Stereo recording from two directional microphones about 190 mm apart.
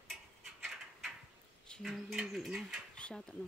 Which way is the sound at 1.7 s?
Centre (ahead or behind).